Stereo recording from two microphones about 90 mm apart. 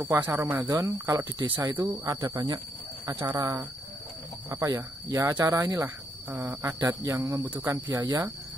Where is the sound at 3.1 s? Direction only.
35° right (ahead or behind).